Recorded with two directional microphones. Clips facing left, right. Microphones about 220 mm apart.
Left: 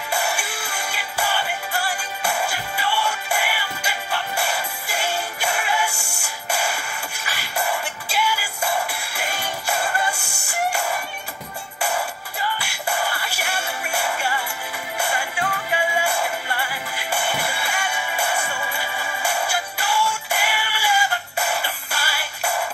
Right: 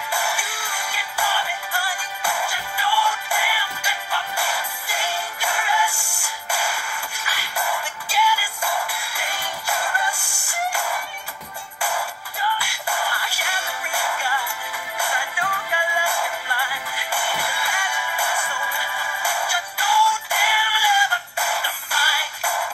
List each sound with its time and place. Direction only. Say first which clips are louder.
0.1 s music: left 3 dB; 20° left (ahead or behind)
7.2 s music: left 2 dB; 25° left (ahead or behind)